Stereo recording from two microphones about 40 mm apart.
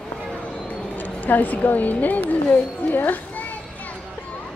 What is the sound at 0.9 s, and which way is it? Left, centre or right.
A woman's voice, left.